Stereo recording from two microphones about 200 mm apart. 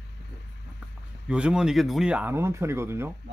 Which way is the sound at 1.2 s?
5° right (ahead or behind).